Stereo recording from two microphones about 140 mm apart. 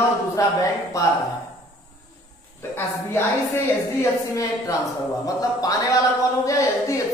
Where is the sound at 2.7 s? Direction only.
15° left (ahead or behind).